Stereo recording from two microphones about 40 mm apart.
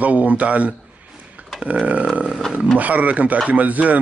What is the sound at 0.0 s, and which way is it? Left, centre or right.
A man's voice, right.